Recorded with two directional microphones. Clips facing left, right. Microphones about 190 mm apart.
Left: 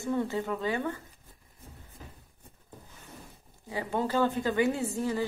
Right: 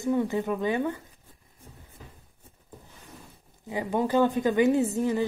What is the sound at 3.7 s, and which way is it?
Speech, 15° right (ahead or behind).